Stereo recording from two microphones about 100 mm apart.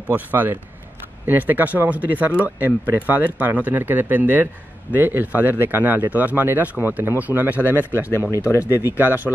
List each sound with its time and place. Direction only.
0.1 s speech: 20° right (ahead or behind)